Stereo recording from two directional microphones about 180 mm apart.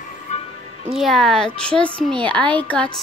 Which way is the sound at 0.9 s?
Centre (ahead or behind).